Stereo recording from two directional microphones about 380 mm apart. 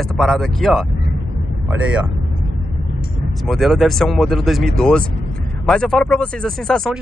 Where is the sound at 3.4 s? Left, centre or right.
Centre.